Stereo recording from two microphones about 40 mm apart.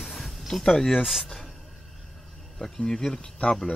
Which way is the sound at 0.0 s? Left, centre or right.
Centre.